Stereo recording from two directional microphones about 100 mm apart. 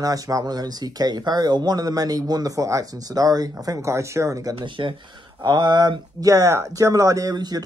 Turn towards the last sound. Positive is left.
turn(degrees=-40)  # may be behind; listen again after turning